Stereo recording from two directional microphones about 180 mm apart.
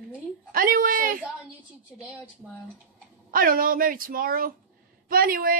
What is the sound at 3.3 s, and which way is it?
A woman's voice, 50° right (ahead or behind).